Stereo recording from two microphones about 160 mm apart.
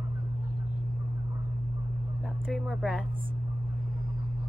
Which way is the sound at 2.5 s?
Centre (ahead or behind).